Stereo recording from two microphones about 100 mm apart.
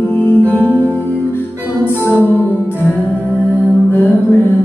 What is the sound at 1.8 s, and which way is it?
Music, 25° left (ahead or behind).